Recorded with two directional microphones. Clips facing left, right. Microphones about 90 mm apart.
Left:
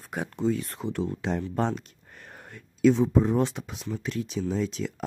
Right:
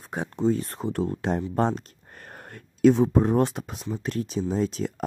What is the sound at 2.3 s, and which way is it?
Speech, 50° right (ahead or behind).